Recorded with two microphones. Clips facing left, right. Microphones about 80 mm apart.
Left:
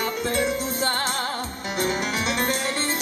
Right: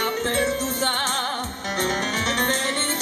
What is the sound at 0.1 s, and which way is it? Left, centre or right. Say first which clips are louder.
Music: right 1 dB; right.